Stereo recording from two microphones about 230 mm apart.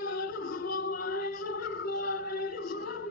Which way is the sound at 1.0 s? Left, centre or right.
Left.